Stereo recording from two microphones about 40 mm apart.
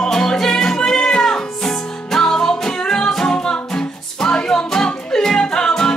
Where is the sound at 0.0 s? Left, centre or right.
Centre.